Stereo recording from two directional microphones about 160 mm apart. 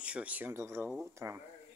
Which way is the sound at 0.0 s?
10° right (ahead or behind).